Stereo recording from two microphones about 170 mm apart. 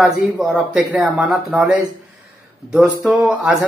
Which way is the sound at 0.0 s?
5° right (ahead or behind).